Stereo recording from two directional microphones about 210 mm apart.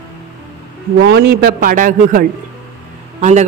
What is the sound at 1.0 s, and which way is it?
A man's voice, 55° right (ahead or behind).